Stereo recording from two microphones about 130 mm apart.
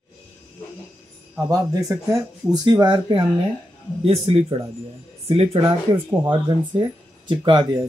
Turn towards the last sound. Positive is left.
turn(degrees=-30)  # may be behind; listen again after turning